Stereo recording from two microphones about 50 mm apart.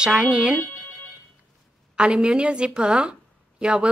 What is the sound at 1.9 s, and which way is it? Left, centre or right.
A woman's voice, centre.